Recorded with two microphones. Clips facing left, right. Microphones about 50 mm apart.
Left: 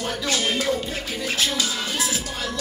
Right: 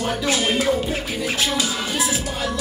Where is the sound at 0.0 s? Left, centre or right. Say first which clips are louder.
Right 3 dB; centre.